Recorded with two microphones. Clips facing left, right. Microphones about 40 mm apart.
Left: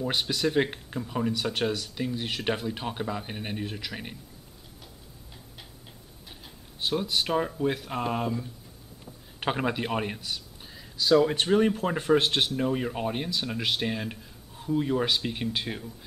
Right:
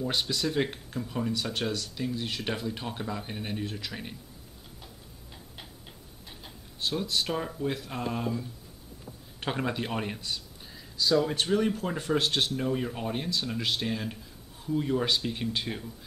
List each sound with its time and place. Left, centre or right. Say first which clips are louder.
0.0 s speech: left 2 dB; centre
6.8 s speech: left 2 dB; left
9.4 s a man's voice: left 3 dB; left